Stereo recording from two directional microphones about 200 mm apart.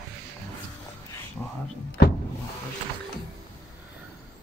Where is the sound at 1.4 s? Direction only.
10° left (ahead or behind).